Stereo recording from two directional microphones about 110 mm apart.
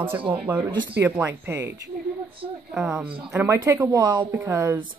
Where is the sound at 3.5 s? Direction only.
25° right (ahead or behind).